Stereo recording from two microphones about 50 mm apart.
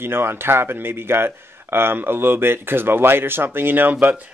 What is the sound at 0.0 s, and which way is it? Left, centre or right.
Speech, right.